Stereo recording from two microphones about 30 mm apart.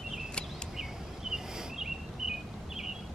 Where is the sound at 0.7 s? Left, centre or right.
Centre.